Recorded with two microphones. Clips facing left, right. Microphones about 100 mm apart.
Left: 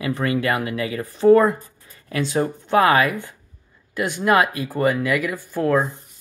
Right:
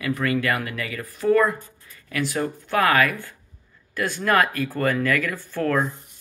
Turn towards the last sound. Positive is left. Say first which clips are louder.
# left 4 dB
turn(degrees=15)  # may be behind; listen again after turning